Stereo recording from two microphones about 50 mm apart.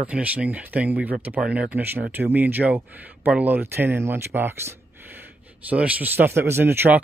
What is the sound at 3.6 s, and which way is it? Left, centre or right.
Speech, right.